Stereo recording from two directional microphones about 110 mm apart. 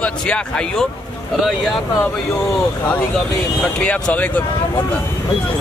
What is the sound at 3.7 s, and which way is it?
Speech, 10° left (ahead or behind).